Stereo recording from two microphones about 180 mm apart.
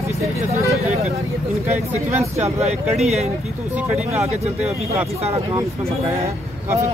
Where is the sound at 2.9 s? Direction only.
35° right (ahead or behind).